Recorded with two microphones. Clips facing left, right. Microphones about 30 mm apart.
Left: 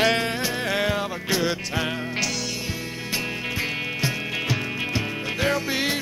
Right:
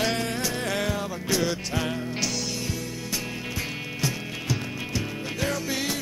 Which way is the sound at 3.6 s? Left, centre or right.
Left.